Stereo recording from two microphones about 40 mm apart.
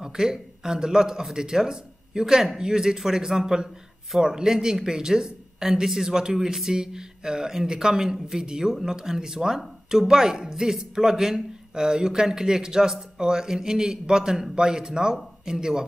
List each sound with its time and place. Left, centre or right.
0.0 s a man's voice: centre